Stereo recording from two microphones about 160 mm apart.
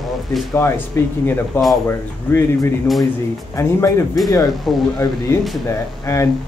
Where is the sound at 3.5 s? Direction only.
15° left (ahead or behind).